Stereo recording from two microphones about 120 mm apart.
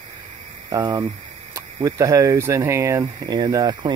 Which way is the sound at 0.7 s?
30° right (ahead or behind).